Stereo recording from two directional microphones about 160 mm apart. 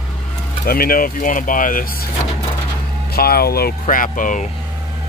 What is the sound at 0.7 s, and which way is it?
Speech, 65° left (ahead or behind).